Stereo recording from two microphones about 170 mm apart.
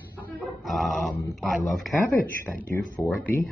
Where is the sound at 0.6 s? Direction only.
Centre (ahead or behind).